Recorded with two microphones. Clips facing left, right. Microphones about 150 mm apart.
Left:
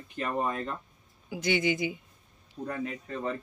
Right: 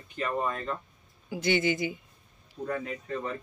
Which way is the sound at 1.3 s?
10° left (ahead or behind).